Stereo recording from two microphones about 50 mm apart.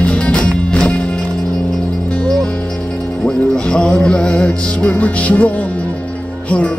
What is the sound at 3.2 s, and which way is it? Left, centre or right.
Music, centre.